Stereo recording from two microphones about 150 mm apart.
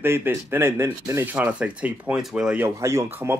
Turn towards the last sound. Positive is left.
turn(degrees=-15)  # may be behind; listen again after turning